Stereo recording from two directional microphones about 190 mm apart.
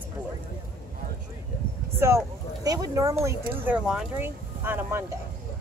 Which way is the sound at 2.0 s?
15° right (ahead or behind).